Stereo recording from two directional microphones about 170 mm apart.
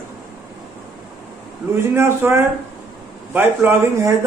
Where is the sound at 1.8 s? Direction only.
15° right (ahead or behind).